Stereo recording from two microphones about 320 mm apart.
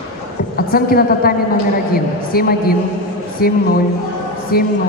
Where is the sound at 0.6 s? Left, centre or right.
Left.